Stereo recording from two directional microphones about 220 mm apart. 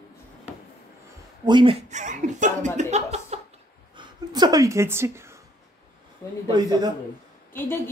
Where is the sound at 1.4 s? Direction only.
20° right (ahead or behind).